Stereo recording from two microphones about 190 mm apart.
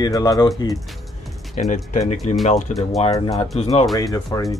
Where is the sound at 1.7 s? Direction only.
40° left (ahead or behind).